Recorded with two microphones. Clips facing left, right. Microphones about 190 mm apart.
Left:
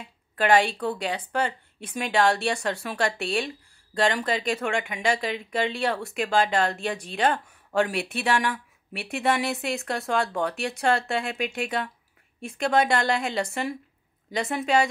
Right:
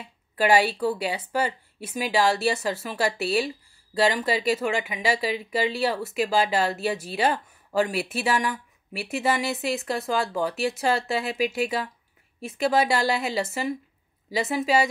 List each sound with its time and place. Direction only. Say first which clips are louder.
0.0 s a woman's voice: right 2 dB; 5° right (ahead or behind)